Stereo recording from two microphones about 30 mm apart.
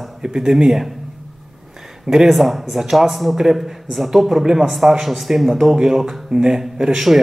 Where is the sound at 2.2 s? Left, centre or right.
Centre.